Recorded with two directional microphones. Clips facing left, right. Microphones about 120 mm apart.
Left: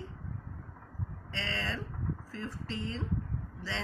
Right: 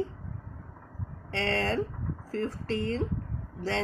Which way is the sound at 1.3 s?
55° right (ahead or behind).